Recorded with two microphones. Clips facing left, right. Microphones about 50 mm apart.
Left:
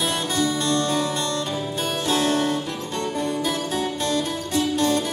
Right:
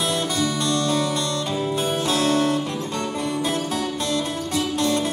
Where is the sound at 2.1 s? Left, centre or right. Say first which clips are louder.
Even; left.